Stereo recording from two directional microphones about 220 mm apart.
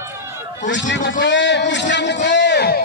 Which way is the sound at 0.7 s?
55° left (ahead or behind).